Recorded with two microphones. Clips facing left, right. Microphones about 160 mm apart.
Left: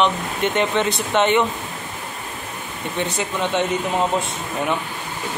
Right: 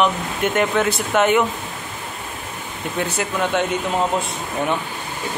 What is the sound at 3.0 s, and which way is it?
Speech, 5° right (ahead or behind).